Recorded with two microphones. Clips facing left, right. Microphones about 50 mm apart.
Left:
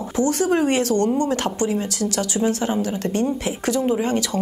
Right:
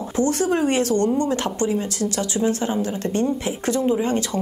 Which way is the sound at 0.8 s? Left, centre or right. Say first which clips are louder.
Even; right.